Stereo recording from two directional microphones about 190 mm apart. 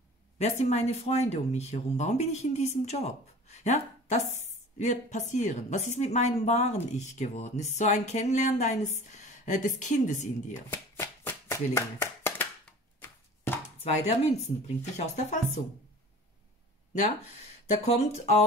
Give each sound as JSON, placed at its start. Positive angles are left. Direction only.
{"t": 0.4, "sound": "speech", "side_deg": 35}
{"t": 10.7, "sound": "shuffling cards", "side_deg": 15}
{"t": 13.8, "sound": "speech", "side_deg": 35}
{"t": 17.8, "sound": "speech", "side_deg": 35}